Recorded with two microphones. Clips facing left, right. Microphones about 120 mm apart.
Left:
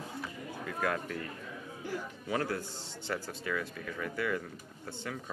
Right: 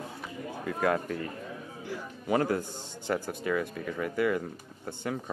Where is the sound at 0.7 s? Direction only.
35° right (ahead or behind).